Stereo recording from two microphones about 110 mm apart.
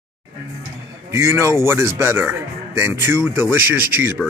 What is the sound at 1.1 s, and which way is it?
Speech, 25° right (ahead or behind).